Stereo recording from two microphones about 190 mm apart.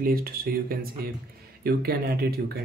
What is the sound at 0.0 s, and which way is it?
Speech, 50° right (ahead or behind).